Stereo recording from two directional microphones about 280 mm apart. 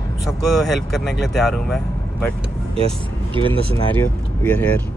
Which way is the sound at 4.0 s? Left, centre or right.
Centre.